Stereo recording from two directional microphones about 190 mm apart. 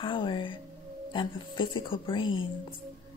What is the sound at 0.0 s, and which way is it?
Speech, 25° left (ahead or behind).